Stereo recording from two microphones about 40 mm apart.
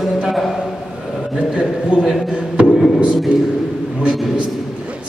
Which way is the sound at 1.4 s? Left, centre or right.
Right.